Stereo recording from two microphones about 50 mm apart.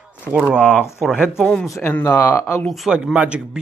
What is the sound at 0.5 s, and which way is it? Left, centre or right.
Speech, left.